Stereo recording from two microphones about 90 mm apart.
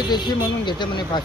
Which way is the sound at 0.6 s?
55° left (ahead or behind).